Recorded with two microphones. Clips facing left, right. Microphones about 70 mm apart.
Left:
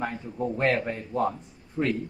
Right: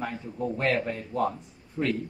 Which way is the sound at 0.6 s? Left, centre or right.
Left.